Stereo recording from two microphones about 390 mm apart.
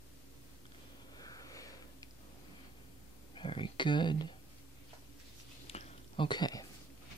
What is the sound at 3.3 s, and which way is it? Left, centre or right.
Speech, centre.